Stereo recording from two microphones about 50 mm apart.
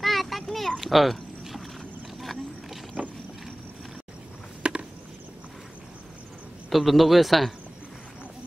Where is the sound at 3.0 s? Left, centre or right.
Right.